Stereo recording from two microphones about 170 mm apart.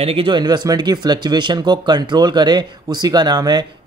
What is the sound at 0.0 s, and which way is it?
Speech, 35° right (ahead or behind).